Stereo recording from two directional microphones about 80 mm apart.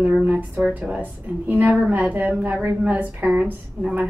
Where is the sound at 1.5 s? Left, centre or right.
Centre.